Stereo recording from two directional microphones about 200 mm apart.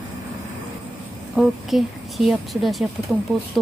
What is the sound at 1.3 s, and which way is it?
A woman's voice, centre (ahead or behind).